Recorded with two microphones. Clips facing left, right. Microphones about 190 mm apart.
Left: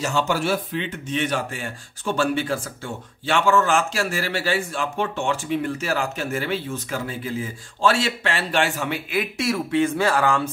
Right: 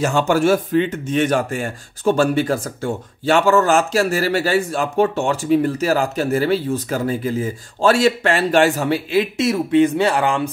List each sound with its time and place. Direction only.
0.0 s speech: 50° right (ahead or behind); by 10.5 s 15° right (ahead or behind)